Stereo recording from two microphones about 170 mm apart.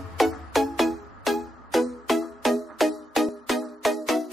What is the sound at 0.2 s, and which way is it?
Music, centre (ahead or behind).